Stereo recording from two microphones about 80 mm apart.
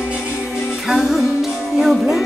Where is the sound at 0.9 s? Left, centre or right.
Centre.